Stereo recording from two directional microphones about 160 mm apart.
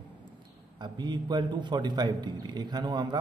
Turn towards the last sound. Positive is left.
turn(degrees=-25)  # may be behind; listen again after turning